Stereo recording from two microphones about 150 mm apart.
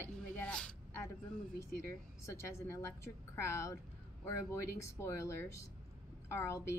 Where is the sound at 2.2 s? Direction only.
20° left (ahead or behind).